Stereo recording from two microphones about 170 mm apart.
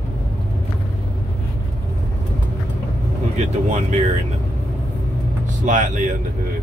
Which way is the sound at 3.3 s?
40° right (ahead or behind).